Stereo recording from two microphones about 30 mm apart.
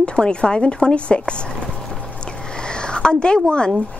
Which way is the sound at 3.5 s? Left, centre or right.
Left.